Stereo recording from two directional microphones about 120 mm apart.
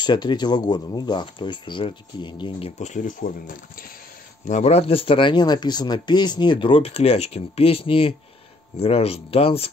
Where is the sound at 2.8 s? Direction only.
90° left.